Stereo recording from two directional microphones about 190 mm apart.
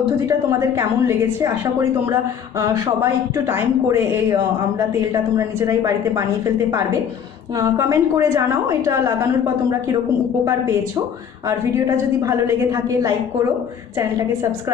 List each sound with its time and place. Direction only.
0.5 s speech: 15° right (ahead or behind)
3.0 s speech: 10° right (ahead or behind)
7.5 s speech: 15° right (ahead or behind)
12.2 s speech: 15° right (ahead or behind)